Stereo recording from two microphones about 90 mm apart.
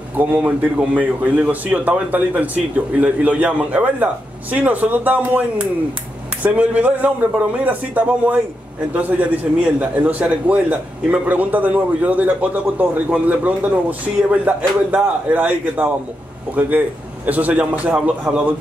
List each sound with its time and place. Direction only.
0.2 s a man's voice: 15° right (ahead or behind)